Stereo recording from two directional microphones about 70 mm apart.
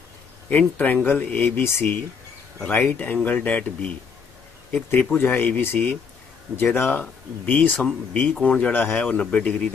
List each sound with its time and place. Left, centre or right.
0.5 s speech: left
1.6 s speech: left
2.6 s speech: left
4.9 s speech: left